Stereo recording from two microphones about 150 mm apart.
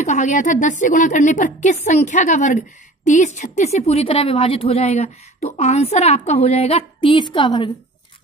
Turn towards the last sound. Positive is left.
turn(degrees=30)  # may be behind; listen again after turning